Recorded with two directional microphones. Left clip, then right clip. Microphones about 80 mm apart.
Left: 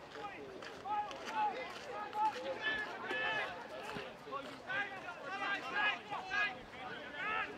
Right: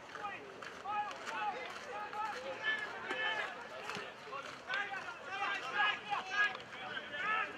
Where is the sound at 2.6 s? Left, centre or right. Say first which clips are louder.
Right 2 dB; centre.